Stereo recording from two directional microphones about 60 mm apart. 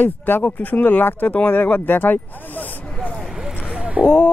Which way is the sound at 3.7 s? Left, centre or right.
Centre.